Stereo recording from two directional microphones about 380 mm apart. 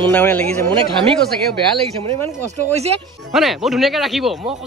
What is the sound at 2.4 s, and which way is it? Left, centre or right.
Speech, centre.